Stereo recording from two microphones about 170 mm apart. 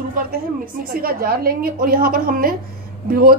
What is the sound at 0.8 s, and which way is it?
A woman's voice, 60° right (ahead or behind).